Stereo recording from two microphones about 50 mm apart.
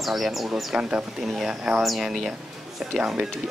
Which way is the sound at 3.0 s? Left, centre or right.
Centre.